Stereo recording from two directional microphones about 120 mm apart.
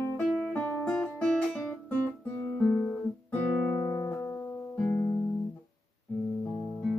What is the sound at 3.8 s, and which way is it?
Music, 25° left (ahead or behind).